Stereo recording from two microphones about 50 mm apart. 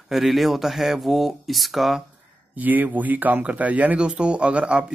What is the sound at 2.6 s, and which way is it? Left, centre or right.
Speech, right.